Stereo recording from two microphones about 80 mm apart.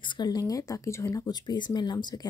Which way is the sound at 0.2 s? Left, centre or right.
Left.